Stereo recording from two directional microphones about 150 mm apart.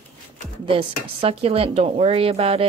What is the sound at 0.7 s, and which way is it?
A woman's voice, 40° right (ahead or behind).